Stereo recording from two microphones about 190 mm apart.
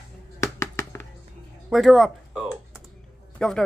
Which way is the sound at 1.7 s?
Centre (ahead or behind).